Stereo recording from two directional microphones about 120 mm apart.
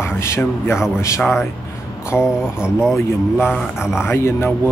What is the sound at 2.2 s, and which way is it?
Speech, 5° right (ahead or behind).